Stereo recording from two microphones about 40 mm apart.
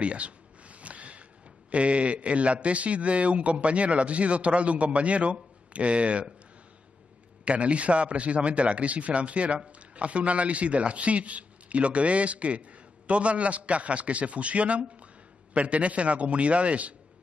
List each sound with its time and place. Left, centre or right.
0.0 s a sound: right
1.7 s speech: right
7.4 s speech: right